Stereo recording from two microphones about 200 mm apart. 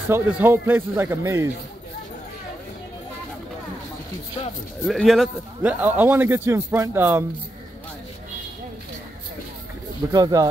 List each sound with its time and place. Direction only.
0.1 s a man's voice: 10° right (ahead or behind)
4.8 s a man's voice: centre (ahead or behind)
10.1 s speech: 20° right (ahead or behind)